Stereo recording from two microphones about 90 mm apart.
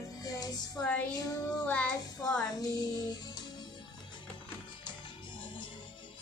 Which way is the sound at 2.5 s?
45° left (ahead or behind).